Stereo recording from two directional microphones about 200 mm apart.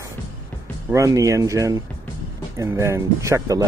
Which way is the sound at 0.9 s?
15° right (ahead or behind).